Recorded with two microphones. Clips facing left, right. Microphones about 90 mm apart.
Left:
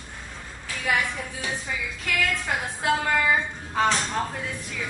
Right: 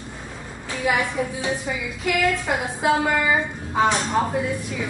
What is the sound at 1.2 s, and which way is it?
A woman's voice, 15° right (ahead or behind).